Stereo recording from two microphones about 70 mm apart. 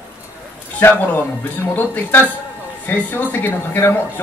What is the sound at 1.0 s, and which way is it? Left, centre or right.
A woman's voice, left.